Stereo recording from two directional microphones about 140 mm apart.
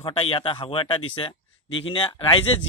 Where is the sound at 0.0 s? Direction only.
40° left (ahead or behind).